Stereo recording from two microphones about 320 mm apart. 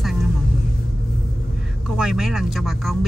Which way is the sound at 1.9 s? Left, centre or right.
Centre.